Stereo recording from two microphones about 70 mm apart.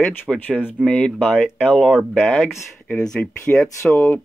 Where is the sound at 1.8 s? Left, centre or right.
Centre.